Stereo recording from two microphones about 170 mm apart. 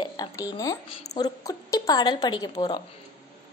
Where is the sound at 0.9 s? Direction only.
40° left (ahead or behind).